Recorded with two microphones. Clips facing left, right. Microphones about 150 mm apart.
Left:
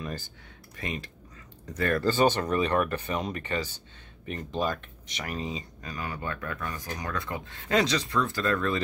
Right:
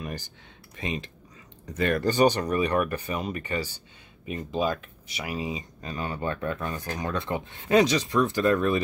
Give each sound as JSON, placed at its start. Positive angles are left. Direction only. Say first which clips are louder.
{"t": 0.0, "sound": "speech", "louder": "right 1 dB", "side_deg": -15}